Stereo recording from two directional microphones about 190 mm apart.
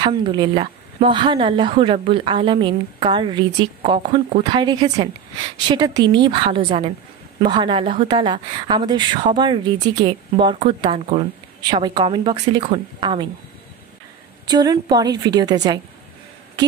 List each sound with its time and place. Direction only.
0.0 s a woman's voice: 25° right (ahead or behind)
14.4 s a woman's voice: 20° right (ahead or behind)